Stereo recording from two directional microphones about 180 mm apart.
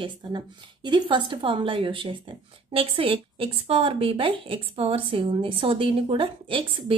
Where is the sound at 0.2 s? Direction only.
25° right (ahead or behind).